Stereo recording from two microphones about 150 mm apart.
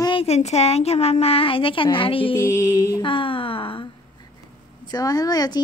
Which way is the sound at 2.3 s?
20° left (ahead or behind).